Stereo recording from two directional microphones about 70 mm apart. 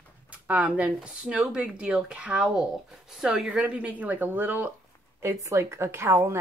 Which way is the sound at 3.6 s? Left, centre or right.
Right.